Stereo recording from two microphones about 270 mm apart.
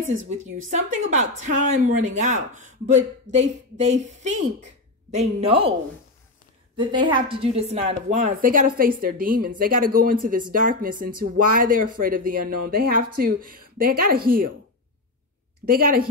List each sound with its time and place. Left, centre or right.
0.7 s a woman's voice: right
6.8 s a woman's voice: centre; by 14.5 s right
15.6 s a woman's voice: right